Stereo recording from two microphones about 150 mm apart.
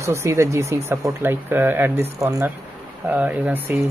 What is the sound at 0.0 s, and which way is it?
Speech, 20° right (ahead or behind).